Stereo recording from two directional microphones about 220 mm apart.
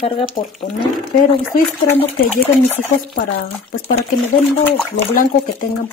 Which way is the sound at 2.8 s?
40° left (ahead or behind).